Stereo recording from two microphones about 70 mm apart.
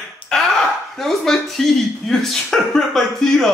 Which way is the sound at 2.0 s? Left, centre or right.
Centre.